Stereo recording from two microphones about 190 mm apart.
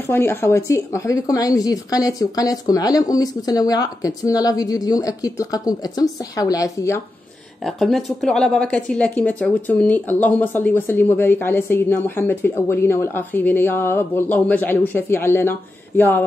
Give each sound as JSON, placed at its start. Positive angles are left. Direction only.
{"t": 0.0, "sound": "speech", "side_deg": 10}
{"t": 7.6, "sound": "speech", "side_deg": 0}